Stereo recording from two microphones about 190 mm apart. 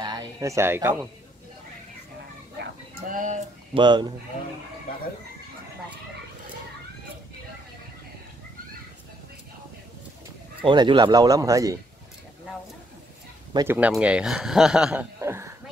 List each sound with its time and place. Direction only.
0.0 s speech: 20° right (ahead or behind)
3.1 s music: 45° right (ahead or behind)
3.7 s speech: 25° right (ahead or behind)
10.6 s speech: 25° right (ahead or behind)
13.7 s speech: 5° right (ahead or behind)